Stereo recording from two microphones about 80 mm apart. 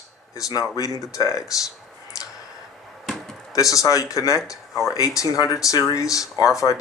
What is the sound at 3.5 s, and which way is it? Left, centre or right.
Speech, left.